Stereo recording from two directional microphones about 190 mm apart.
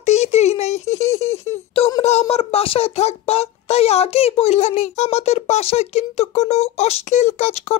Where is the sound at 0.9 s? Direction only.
15° left (ahead or behind).